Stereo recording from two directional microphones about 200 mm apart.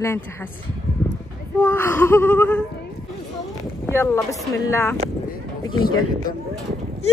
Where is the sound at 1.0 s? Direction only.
10° left (ahead or behind).